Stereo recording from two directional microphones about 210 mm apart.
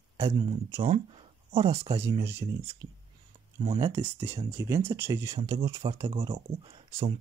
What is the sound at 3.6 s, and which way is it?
Speech, 25° right (ahead or behind).